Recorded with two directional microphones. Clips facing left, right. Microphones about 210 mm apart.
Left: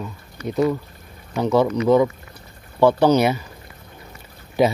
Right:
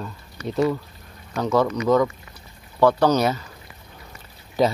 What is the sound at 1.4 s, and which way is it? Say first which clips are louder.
Speech: left 3 dB; 15° left (ahead or behind).